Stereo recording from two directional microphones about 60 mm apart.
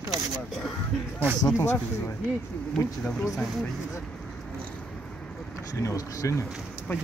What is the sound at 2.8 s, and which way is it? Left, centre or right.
Speech, left.